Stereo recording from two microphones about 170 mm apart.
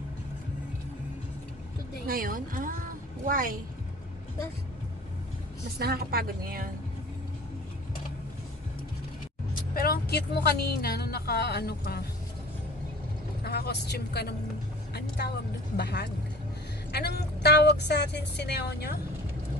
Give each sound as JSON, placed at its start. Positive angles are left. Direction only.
{"t": 2.0, "sound": "a woman's voice", "side_deg": -55}
{"t": 5.8, "sound": "a woman's voice", "side_deg": -65}
{"t": 9.5, "sound": "speech", "side_deg": 60}
{"t": 13.4, "sound": "a woman's voice", "side_deg": 70}
{"t": 17.2, "sound": "a woman's voice", "side_deg": 75}